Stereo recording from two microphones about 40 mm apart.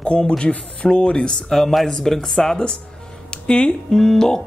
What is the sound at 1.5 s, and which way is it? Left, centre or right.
Speech, centre.